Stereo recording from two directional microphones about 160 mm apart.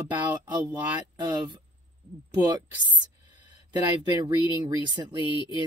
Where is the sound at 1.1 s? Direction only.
25° right (ahead or behind).